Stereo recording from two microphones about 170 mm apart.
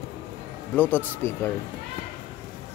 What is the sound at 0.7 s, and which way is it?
Speech, 10° left (ahead or behind).